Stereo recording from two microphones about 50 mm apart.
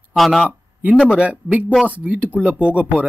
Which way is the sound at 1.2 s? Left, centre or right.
Right.